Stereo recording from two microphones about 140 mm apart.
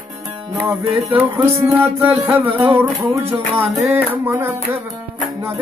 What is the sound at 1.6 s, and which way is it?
Music, 15° right (ahead or behind).